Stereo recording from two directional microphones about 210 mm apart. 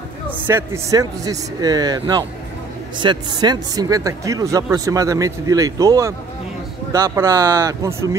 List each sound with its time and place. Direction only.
0.5 s a man's voice: 15° right (ahead or behind)